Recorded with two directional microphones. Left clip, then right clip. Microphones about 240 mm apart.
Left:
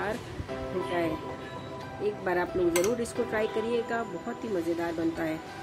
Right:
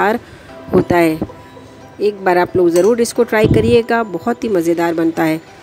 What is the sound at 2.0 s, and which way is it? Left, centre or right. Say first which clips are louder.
Speech: right 16 dB; right.